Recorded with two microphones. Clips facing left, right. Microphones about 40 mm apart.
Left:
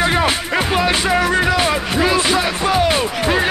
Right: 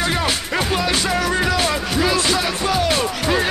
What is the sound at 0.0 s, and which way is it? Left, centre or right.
Music, left.